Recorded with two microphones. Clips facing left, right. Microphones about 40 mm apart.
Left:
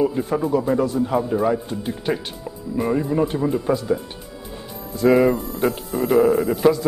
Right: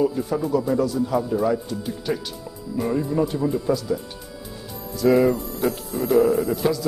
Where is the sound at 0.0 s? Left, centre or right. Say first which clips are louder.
Left 2 dB; left.